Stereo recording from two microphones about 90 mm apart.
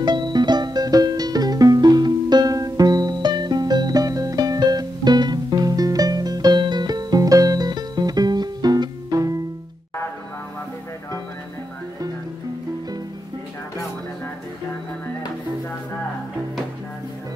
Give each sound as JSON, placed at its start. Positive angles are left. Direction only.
{"t": 0.0, "sound": "music", "side_deg": -55}